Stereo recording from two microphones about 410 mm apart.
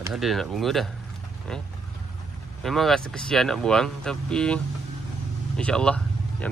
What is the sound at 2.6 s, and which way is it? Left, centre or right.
Speech, centre.